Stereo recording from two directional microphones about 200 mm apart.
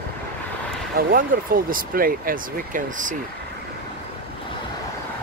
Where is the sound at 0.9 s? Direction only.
45° right (ahead or behind).